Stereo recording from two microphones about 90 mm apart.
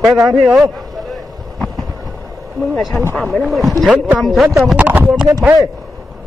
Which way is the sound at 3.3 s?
Centre (ahead or behind).